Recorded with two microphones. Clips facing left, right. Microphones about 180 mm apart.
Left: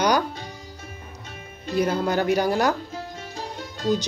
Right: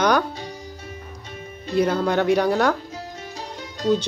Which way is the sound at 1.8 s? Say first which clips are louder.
Right 2 dB; 5° left (ahead or behind).